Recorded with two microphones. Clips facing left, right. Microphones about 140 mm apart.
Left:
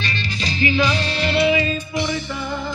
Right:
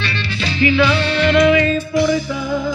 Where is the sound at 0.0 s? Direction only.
40° left (ahead or behind).